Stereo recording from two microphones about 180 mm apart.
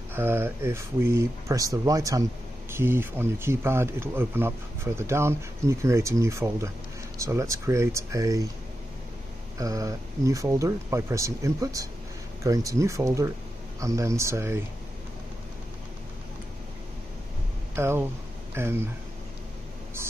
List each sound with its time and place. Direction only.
0.1 s speech: 10° right (ahead or behind)
9.6 s speech: 20° right (ahead or behind)
17.7 s speech: 15° right (ahead or behind)